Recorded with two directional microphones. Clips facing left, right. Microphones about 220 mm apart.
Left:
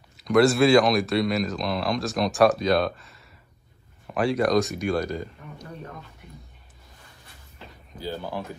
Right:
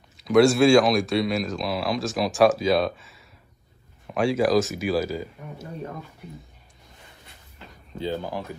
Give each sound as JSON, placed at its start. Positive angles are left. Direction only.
{"t": 0.2, "sound": "speech", "side_deg": 0}
{"t": 7.9, "sound": "speech", "side_deg": -20}